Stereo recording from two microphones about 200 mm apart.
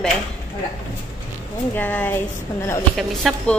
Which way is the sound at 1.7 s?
10° left (ahead or behind).